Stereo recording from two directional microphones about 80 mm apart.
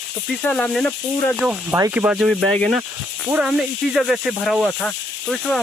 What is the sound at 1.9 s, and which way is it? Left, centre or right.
Speech, centre.